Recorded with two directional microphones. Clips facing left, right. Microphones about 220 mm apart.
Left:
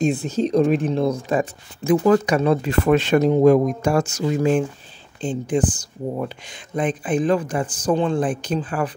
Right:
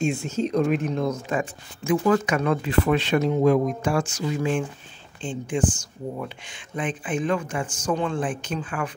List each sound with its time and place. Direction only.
0.0 s speech: 35° left (ahead or behind)